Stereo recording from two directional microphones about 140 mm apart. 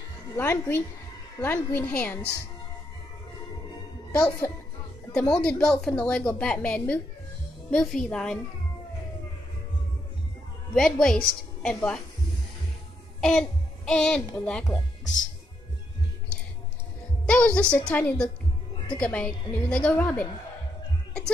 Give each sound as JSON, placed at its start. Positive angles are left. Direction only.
{"t": 0.4, "sound": "a woman's voice", "side_deg": 15}
{"t": 4.1, "sound": "a woman's voice", "side_deg": 10}
{"t": 10.7, "sound": "a woman's voice", "side_deg": 5}
{"t": 13.2, "sound": "a child's voice", "side_deg": 0}
{"t": 17.3, "sound": "a woman's voice", "side_deg": 10}